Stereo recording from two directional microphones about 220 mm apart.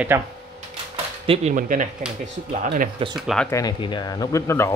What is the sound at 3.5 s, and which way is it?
Speech, 15° left (ahead or behind).